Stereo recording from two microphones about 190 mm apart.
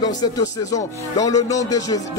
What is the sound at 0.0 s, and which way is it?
Speech, 20° left (ahead or behind).